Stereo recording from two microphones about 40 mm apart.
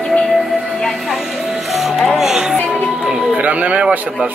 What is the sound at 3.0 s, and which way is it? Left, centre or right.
Speech, centre.